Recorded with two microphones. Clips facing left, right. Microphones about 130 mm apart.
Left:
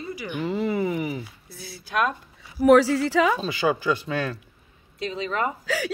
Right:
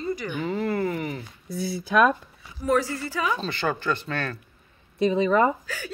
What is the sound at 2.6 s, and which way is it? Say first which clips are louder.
Speech: left 8 dB; 90° left.